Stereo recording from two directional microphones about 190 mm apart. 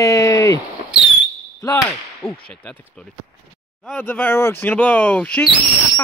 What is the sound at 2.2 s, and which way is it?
Speech, centre (ahead or behind).